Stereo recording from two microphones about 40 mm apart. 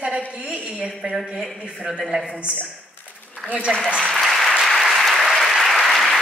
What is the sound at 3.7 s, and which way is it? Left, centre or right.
Speech, centre.